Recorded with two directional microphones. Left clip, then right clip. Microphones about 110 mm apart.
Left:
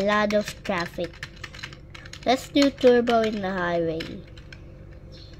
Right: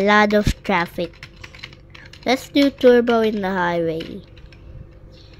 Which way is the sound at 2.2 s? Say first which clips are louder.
Right 3 dB; 25° right (ahead or behind).